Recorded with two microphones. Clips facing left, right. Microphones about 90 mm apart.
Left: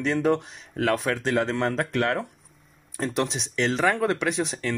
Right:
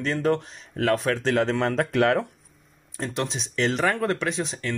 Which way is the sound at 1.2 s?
Centre (ahead or behind).